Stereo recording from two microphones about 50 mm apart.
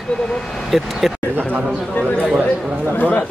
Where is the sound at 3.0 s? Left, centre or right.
Left.